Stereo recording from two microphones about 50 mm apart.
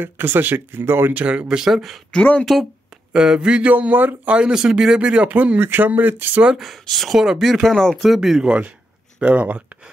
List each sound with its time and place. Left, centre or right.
0.0 s speech: right
1.1 s speech: right
1.5 s speech: centre
3.1 s speech: centre
3.7 s speech: right
4.3 s speech: centre
5.6 s speech: right
6.6 s speech: centre
7.2 s speech: centre
8.5 s speech: right